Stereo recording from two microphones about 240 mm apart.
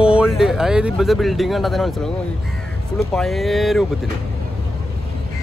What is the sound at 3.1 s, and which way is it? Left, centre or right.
Speech, centre.